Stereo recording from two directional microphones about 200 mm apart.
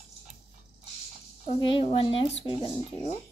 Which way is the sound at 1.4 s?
25° left (ahead or behind).